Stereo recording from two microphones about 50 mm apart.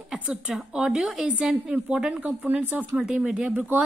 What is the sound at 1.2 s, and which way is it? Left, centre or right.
A woman's voice, right.